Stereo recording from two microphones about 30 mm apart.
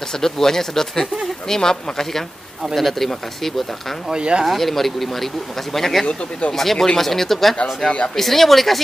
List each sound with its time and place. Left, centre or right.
0.1 s speech: centre
2.6 s speech: centre
4.1 s speech: right
4.5 s speech: centre